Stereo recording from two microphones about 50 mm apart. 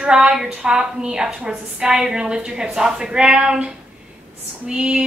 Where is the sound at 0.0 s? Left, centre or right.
Centre.